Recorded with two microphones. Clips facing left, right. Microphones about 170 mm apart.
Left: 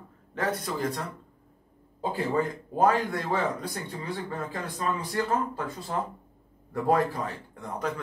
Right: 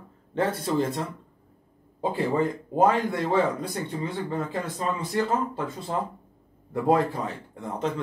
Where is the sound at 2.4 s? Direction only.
25° right (ahead or behind).